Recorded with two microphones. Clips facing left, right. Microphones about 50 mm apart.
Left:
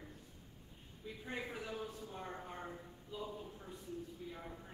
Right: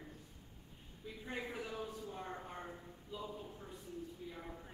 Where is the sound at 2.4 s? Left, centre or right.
Centre.